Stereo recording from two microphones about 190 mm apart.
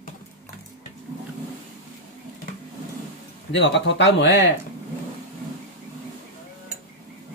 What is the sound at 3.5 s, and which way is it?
Speech, 70° left (ahead or behind).